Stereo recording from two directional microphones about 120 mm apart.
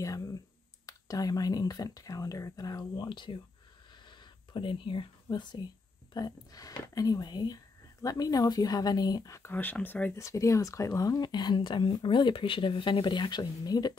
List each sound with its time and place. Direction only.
0.0 s a sound: 30° left (ahead or behind)
0.8 s speech: 30° left (ahead or behind); by 10.2 s 15° left (ahead or behind)
10.2 s speech: 25° left (ahead or behind)